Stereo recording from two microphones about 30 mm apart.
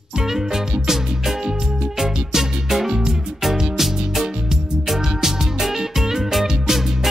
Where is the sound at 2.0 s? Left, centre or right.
Centre.